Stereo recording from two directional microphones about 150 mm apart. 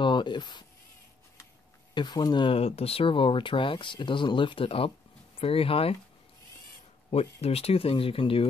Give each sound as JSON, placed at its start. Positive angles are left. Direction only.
{"t": 0.0, "sound": "speech", "side_deg": 30}
{"t": 2.0, "sound": "speech", "side_deg": 30}
{"t": 7.1, "sound": "speech", "side_deg": 45}